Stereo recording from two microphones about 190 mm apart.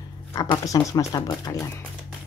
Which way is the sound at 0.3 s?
20° left (ahead or behind).